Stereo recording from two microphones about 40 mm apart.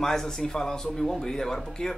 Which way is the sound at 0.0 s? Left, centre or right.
Centre.